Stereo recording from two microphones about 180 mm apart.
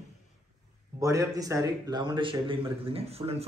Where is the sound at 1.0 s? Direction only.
20° right (ahead or behind); by 3.5 s 35° right (ahead or behind).